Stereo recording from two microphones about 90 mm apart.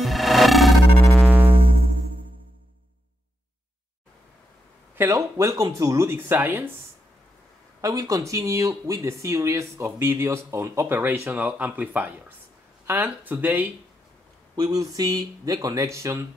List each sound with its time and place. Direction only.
0.0 s music: centre (ahead or behind)
1.5 s music: 90° right
4.9 s speech: 30° right (ahead or behind)
5.6 s speech: 40° right (ahead or behind)
6.1 s speech: 20° right (ahead or behind)
7.8 s speech: 40° right (ahead or behind)
11.0 s speech: 20° right (ahead or behind)
14.5 s speech: 45° right (ahead or behind)